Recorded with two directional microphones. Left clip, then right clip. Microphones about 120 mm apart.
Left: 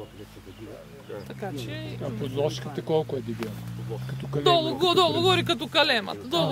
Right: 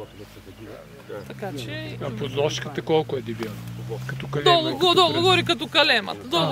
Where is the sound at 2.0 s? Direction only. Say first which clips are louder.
Right 3 dB; 25° right (ahead or behind).